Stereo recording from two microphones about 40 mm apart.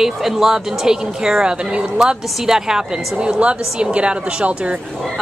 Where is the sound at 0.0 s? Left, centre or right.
Centre.